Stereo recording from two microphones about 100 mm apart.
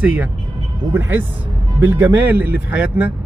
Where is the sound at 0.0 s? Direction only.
15° right (ahead or behind).